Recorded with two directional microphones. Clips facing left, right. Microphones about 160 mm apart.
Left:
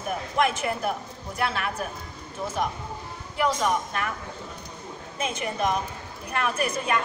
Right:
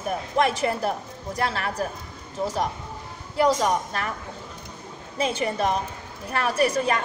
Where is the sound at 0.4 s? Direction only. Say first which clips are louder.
Right 2 dB; 35° right (ahead or behind).